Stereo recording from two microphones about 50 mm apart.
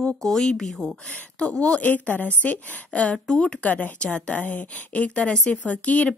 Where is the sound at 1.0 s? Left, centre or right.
Left.